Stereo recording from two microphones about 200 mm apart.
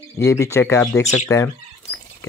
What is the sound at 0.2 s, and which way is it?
Speech, 15° left (ahead or behind).